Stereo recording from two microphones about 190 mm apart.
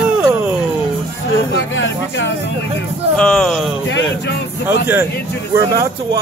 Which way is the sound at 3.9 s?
70° left (ahead or behind).